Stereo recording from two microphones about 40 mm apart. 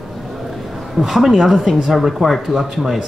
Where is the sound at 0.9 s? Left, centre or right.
Centre.